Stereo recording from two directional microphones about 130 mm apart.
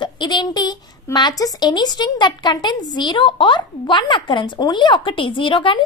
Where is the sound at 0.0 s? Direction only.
35° left (ahead or behind).